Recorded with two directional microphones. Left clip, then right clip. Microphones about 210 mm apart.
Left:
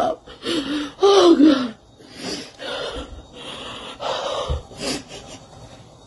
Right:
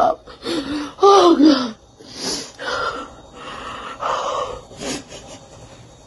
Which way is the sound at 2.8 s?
15° left (ahead or behind).